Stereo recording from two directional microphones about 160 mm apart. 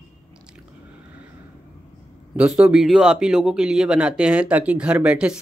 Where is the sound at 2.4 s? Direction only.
5° right (ahead or behind).